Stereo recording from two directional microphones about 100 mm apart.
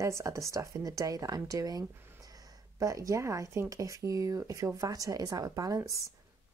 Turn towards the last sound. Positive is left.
turn(degrees=-30)  # may be behind; listen again after turning